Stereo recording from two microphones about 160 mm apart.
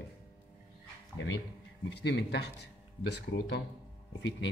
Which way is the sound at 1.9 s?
90° left.